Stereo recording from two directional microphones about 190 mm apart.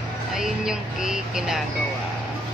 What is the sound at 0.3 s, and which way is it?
Speech, 5° right (ahead or behind).